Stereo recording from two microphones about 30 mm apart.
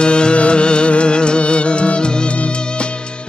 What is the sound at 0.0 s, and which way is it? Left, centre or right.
Music, left.